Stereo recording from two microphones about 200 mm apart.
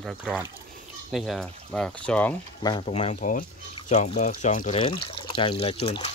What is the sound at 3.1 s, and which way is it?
Speech, 45° left (ahead or behind).